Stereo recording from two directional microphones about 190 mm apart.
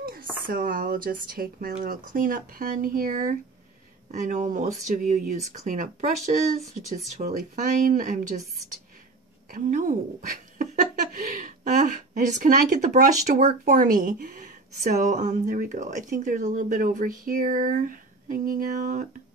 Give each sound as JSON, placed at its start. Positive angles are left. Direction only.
{"t": 0.5, "sound": "speech", "side_deg": -50}